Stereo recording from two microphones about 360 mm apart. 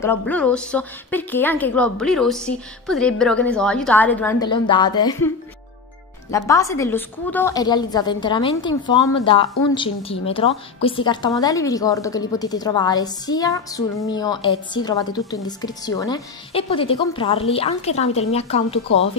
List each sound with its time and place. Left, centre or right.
0.0 s a woman's voice: centre
6.3 s a woman's voice: centre